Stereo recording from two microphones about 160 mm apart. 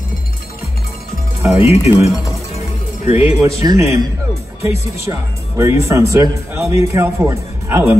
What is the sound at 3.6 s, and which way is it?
A man's voice, 20° right (ahead or behind).